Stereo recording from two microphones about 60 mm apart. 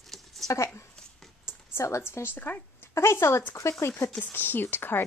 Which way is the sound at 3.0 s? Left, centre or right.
Left.